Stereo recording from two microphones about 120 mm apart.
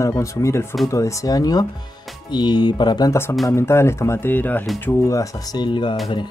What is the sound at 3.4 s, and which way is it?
Speech, 20° left (ahead or behind).